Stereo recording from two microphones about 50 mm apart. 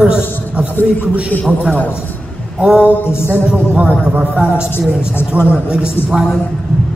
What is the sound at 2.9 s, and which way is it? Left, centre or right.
Speech, left.